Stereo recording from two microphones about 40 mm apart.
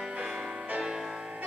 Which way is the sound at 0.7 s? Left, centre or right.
Right.